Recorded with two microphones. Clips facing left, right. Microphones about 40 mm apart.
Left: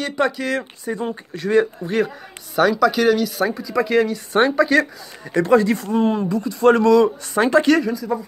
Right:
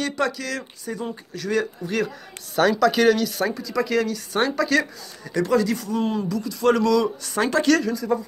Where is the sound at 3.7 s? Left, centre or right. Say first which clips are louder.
Left 6 dB; left.